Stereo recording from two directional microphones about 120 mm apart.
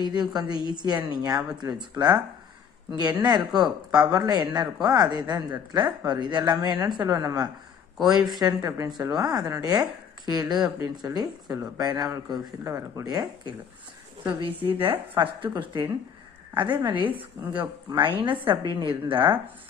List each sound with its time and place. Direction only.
0.0 s speech: 35° right (ahead or behind)
14.2 s a woman's voice: 45° right (ahead or behind)
17.9 s a woman's voice: 45° right (ahead or behind)